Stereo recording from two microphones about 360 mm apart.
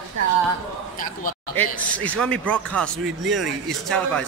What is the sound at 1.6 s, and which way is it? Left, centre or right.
Speech, centre.